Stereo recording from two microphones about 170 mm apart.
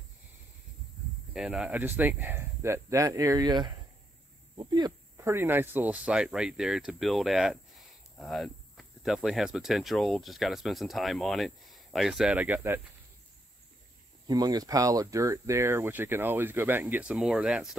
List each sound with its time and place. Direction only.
1.3 s speech: 5° right (ahead or behind)
14.2 s speech: 25° right (ahead or behind); by 17.6 s 5° right (ahead or behind)